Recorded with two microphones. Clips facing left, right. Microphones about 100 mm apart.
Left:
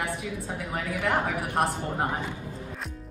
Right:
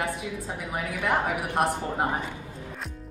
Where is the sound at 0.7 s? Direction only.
10° right (ahead or behind).